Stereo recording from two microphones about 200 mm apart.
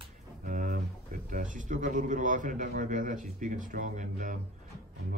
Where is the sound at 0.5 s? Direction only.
40° right (ahead or behind).